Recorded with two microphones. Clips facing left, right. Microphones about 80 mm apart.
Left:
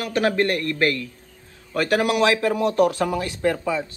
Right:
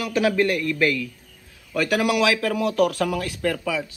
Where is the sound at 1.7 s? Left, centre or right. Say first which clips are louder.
Left 1 dB; left.